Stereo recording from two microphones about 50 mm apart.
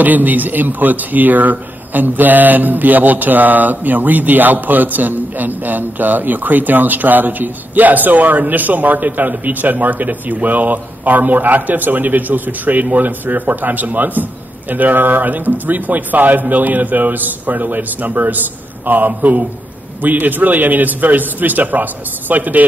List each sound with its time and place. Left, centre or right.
0.0 s speech: right